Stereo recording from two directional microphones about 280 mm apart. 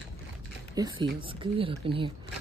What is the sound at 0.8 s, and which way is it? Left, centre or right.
Speech, centre.